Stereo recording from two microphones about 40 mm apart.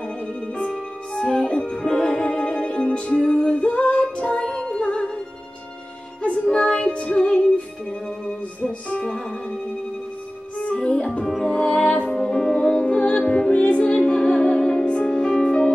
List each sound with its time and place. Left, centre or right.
0.7 s music: centre
6.5 s music: left
8.8 s music: left
10.6 s music: left
12.1 s music: centre